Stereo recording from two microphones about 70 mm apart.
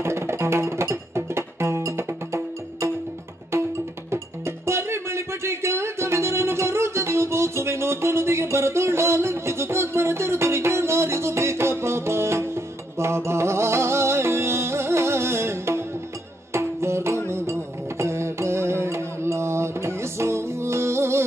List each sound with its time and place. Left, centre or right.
0.0 s music: right